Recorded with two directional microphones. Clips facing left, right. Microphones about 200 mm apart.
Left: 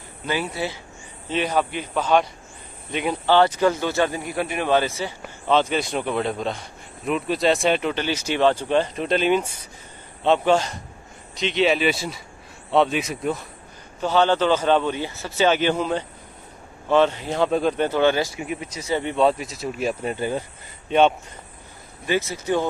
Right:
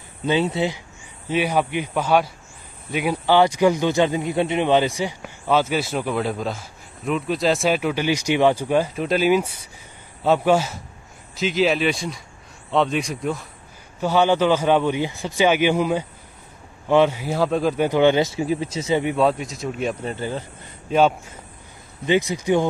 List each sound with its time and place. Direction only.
0.3 s speech: 25° right (ahead or behind); by 13.5 s centre (ahead or behind)
14.0 s speech: 10° right (ahead or behind)
19.1 s speech: centre (ahead or behind)
20.9 s speech: centre (ahead or behind)
22.0 s speech: 20° right (ahead or behind)